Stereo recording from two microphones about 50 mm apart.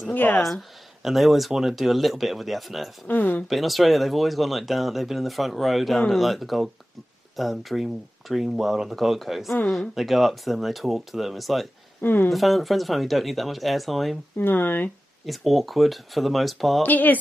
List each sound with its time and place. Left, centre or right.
0.1 s speech: left
0.4 s speech: centre
3.1 s speech: left
3.4 s speech: centre
12.0 s speech: left
12.3 s speech: centre
14.4 s speech: left
15.2 s speech: centre
16.8 s speech: left